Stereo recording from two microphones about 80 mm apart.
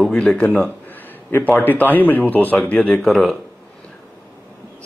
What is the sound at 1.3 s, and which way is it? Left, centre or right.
Speech, left.